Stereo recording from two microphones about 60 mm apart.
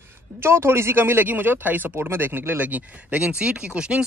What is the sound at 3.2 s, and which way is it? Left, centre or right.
Speech, centre.